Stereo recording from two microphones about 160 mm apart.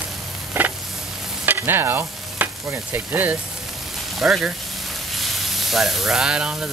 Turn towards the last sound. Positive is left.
turn(degrees=-5)  # may be behind; listen again after turning